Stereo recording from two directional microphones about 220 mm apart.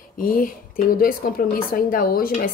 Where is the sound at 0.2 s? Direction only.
40° left (ahead or behind).